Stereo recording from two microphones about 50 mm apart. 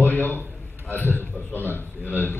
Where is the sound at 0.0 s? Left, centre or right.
Left.